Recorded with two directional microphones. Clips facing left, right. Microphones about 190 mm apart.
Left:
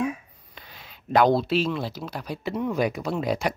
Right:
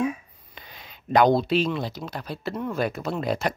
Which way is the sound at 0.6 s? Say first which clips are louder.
Right 1 dB; centre (ahead or behind).